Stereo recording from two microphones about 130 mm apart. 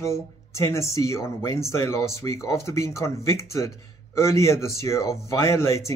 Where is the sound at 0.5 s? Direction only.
20° left (ahead or behind).